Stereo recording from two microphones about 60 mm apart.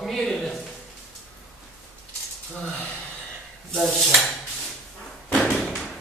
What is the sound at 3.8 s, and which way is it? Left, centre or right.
Dishes, centre.